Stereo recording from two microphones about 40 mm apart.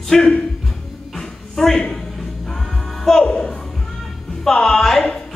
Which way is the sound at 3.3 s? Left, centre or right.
Left.